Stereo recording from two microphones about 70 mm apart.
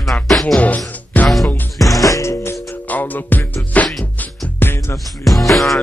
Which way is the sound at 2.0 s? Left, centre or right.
Left.